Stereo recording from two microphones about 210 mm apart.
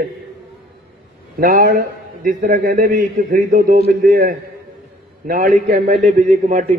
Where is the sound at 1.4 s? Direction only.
40° right (ahead or behind).